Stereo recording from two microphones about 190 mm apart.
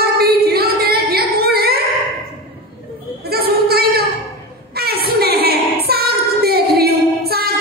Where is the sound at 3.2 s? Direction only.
55° right (ahead or behind).